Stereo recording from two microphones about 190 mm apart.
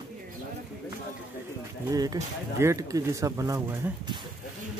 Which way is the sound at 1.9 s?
20° right (ahead or behind).